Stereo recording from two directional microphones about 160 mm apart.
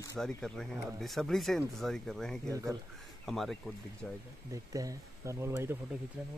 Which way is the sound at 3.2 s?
Centre (ahead or behind).